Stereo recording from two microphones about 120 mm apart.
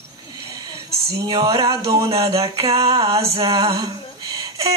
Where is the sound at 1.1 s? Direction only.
30° right (ahead or behind).